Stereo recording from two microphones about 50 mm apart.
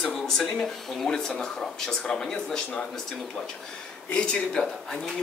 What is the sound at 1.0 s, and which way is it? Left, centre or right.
Speech, centre.